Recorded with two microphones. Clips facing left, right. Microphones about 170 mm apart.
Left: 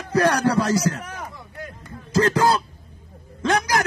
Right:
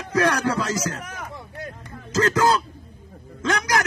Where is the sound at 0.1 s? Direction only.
35° left (ahead or behind).